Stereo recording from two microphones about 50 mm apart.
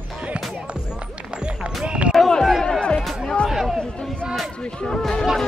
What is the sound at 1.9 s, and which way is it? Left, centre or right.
Run, right.